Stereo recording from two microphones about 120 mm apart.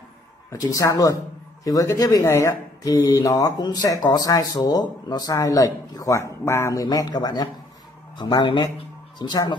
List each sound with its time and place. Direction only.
0.5 s speech: 25° left (ahead or behind)